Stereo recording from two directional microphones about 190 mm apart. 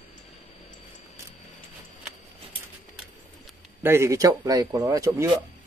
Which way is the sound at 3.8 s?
15° right (ahead or behind).